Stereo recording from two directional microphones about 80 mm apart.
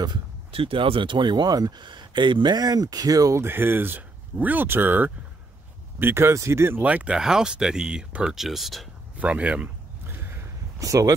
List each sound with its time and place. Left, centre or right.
0.7 s speech: right
3.4 s speech: right
6.8 s speech: centre
9.2 s speech: centre
10.0 s a sound: right
10.8 s speech: right